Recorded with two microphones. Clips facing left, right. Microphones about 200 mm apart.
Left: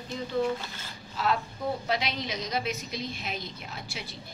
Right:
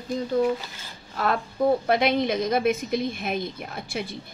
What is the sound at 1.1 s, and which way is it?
Speech, 55° right (ahead or behind).